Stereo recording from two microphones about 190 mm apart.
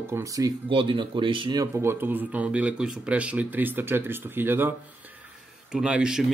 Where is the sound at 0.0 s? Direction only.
15° right (ahead or behind).